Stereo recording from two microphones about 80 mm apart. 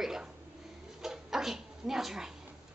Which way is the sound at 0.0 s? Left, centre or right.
Centre.